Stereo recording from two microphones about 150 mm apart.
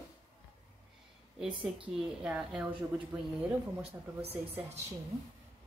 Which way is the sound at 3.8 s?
40° right (ahead or behind).